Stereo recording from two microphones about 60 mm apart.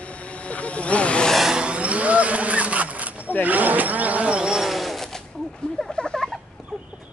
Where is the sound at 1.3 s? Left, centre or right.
Centre.